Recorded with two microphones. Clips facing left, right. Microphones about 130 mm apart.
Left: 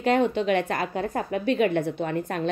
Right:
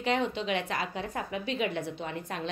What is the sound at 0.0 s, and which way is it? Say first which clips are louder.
A woman's voice: left 7 dB; 50° left (ahead or behind).